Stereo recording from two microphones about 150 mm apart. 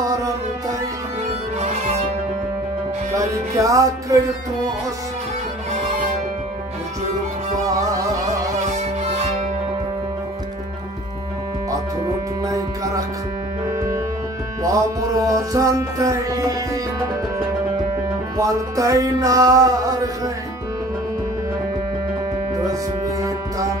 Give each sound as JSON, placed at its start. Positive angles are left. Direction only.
{"t": 0.0, "sound": "music", "side_deg": -25}
{"t": 1.6, "sound": "music", "side_deg": -50}
{"t": 3.2, "sound": "music", "side_deg": -20}
{"t": 8.6, "sound": "music", "side_deg": -50}
{"t": 12.4, "sound": "music", "side_deg": -20}
{"t": 18.4, "sound": "music", "side_deg": -20}
{"t": 22.7, "sound": "music", "side_deg": -20}